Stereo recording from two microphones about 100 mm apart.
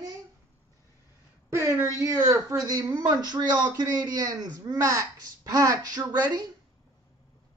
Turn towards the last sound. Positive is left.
turn(degrees=-40)  # may be behind; listen again after turning